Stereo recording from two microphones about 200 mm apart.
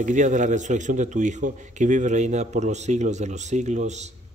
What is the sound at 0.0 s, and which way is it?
Speech, 40° right (ahead or behind).